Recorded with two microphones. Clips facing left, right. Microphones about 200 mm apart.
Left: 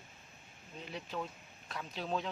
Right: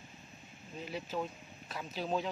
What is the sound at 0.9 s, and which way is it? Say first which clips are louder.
Speech: right 3 dB; 5° right (ahead or behind).